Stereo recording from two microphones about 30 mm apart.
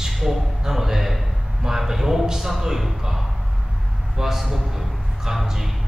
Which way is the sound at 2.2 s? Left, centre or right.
Centre.